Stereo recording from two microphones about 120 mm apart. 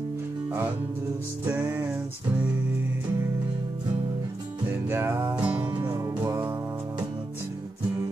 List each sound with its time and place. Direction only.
1.4 s music: 15° right (ahead or behind)
4.8 s music: 20° right (ahead or behind)
5.8 s music: 25° right (ahead or behind)